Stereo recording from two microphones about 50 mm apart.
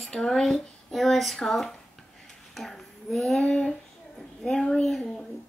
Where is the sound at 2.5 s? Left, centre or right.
Centre.